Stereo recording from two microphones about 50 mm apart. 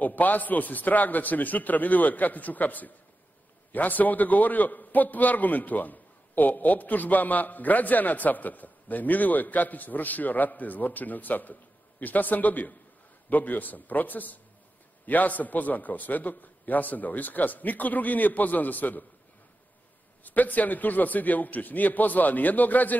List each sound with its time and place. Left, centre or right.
0.0 s a man's voice: left
20.2 s a man's voice: left